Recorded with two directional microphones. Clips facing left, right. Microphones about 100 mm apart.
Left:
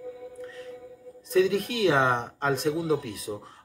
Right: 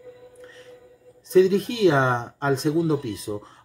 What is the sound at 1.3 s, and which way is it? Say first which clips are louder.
Speech: right 6 dB; 25° right (ahead or behind).